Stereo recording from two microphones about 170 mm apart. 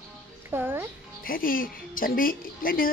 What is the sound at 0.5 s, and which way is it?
Speech, 15° right (ahead or behind).